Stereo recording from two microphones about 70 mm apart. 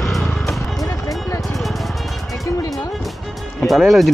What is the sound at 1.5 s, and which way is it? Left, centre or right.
Music, centre.